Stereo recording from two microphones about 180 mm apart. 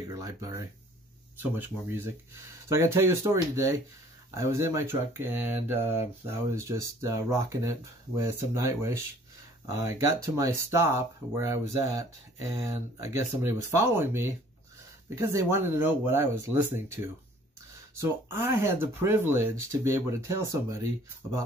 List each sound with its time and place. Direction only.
0.1 s speech: 15° right (ahead or behind)